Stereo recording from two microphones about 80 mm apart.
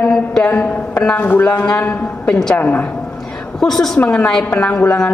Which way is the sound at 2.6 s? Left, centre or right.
Left.